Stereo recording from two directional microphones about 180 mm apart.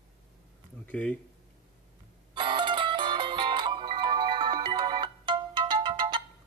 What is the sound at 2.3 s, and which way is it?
Music, 25° right (ahead or behind).